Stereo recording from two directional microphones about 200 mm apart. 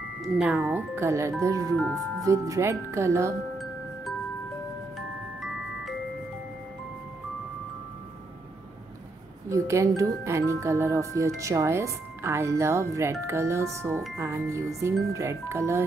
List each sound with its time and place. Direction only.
0.2 s speech: 5° right (ahead or behind)
4.9 s glockenspiel: centre (ahead or behind)
9.5 s speech: 15° right (ahead or behind)